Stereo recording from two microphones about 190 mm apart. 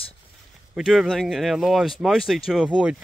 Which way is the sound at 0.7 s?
Centre (ahead or behind).